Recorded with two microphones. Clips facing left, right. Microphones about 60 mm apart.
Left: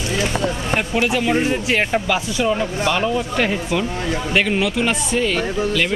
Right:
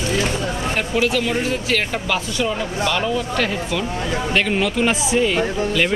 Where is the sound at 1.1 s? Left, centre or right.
Centre.